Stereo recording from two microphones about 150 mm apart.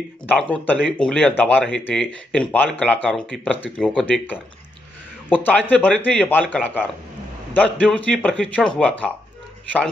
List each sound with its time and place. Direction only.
0.3 s speech: 10° left (ahead or behind)